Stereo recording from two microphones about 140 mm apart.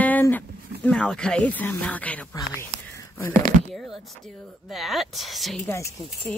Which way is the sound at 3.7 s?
Centre (ahead or behind).